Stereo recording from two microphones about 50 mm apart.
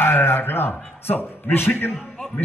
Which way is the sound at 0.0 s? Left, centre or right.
Left.